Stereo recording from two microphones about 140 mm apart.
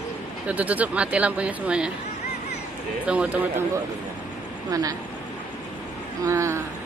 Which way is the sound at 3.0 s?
10° right (ahead or behind).